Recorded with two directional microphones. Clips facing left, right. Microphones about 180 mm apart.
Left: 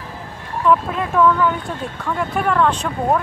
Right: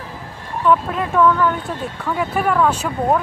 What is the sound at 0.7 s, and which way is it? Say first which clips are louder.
Speech: even; centre (ahead or behind).